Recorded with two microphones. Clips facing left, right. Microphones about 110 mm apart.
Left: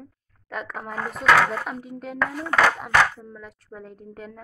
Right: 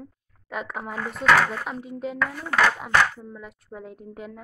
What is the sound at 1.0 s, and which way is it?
Speech, 40° left (ahead or behind).